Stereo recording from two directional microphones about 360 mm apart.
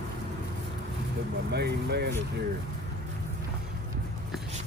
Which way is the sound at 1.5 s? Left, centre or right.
Right.